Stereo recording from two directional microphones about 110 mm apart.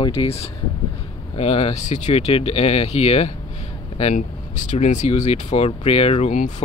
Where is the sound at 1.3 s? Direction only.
60° left (ahead or behind).